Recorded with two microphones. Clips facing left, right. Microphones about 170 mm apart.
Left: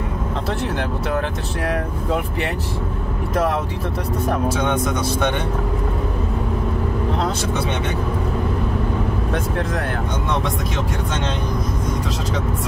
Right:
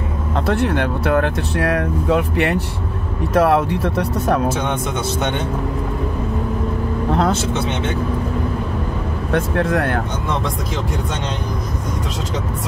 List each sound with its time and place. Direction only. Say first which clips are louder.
0.5 s speech: right 7 dB; 60° right (ahead or behind)
9.7 s speech: right 5 dB; 65° right (ahead or behind)